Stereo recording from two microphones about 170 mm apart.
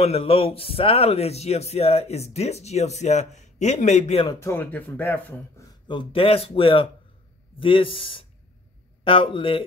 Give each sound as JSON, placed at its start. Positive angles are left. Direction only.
{"t": 0.0, "sound": "speech", "side_deg": 35}
{"t": 4.3, "sound": "speech", "side_deg": 15}
{"t": 5.9, "sound": "speech", "side_deg": 30}